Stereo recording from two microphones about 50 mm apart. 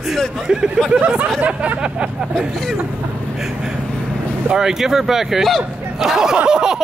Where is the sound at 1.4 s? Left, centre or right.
Right.